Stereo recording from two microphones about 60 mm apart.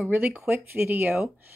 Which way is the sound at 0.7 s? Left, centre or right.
Right.